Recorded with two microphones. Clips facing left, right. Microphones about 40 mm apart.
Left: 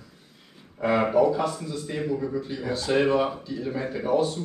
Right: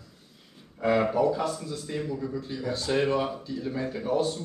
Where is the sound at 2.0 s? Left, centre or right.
Left.